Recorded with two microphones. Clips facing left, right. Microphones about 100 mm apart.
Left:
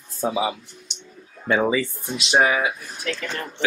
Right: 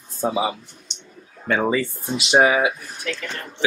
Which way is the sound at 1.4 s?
5° left (ahead or behind).